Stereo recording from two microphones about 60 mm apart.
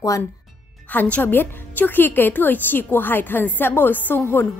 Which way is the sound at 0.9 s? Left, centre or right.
Left.